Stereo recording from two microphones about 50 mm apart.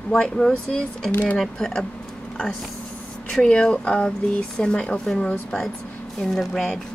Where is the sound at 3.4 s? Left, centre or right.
Centre.